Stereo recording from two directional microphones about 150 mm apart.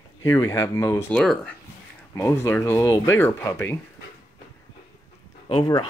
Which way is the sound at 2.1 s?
20° left (ahead or behind).